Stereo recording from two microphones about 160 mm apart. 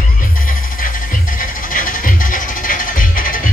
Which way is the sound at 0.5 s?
60° left (ahead or behind).